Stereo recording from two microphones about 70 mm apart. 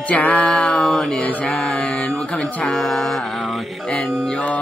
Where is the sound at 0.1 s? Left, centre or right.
Left.